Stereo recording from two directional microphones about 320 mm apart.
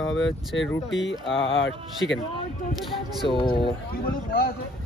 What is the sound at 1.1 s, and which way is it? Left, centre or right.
Speech, left.